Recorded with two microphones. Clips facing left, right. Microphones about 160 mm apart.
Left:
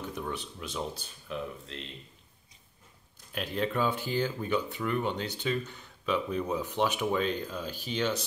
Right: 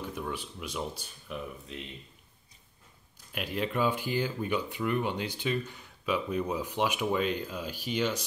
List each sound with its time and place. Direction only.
0.0 s speech: 10° right (ahead or behind)
3.3 s speech: 10° right (ahead or behind)